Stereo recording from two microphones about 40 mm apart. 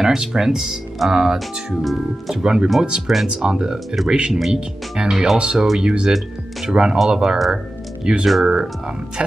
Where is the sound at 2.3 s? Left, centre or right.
Centre.